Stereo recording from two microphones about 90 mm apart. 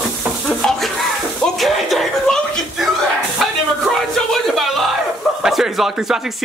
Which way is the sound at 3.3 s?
Centre (ahead or behind).